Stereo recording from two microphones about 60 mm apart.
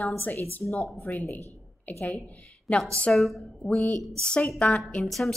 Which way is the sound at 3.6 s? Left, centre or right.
Centre.